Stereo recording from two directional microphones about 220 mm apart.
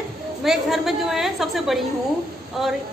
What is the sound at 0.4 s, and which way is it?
A woman's voice, centre (ahead or behind).